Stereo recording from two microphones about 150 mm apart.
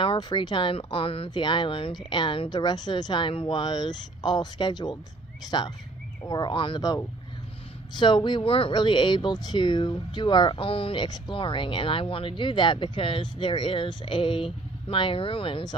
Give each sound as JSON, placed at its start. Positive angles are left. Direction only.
{"t": 0.0, "sound": "speech", "side_deg": 35}